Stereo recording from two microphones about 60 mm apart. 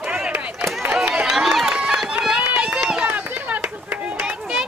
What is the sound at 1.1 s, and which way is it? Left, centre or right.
Run, centre.